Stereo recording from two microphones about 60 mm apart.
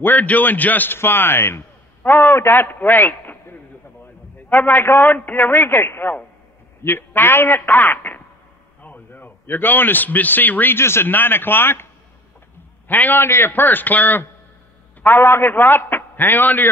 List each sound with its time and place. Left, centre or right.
0.0 s a man's voice: left
0.9 s a man's voice: left
10.8 s a man's voice: left
15.1 s a man's voice: left